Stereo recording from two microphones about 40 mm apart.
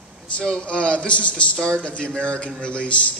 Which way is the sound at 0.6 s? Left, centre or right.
Left.